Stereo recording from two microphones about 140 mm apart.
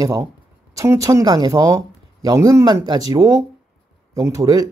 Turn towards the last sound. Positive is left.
turn(degrees=-25)  # may be behind; listen again after turning